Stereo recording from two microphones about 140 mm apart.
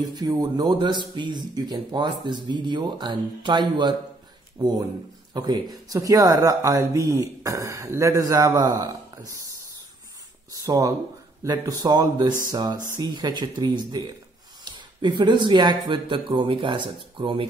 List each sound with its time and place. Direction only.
0.1 s speech: 30° right (ahead or behind)
10.5 s speech: 25° right (ahead or behind)